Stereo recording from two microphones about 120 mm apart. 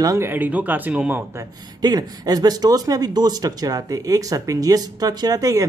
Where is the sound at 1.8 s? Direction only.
35° right (ahead or behind).